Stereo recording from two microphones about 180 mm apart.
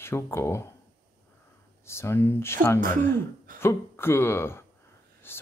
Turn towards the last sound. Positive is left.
turn(degrees=10)  # may be behind; listen again after turning